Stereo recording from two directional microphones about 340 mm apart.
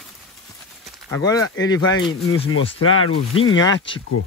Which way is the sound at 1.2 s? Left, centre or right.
Centre.